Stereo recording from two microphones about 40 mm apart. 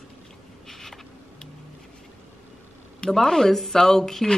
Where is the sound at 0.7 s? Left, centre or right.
Centre.